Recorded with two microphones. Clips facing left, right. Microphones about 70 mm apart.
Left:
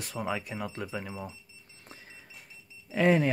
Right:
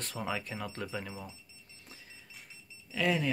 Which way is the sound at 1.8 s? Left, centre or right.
Left.